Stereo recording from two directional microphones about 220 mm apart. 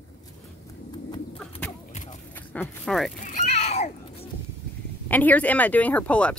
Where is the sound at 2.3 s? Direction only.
10° left (ahead or behind).